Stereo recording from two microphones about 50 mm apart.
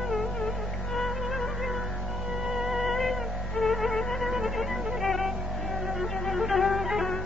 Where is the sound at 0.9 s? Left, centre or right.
Centre.